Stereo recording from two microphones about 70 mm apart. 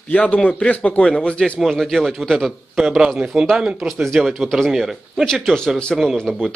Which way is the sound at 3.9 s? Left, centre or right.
Centre.